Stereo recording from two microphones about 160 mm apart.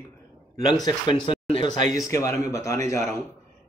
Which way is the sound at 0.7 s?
30° left (ahead or behind).